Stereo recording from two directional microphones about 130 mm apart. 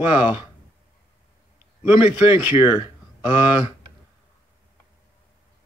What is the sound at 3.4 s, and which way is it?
Speech, 10° right (ahead or behind).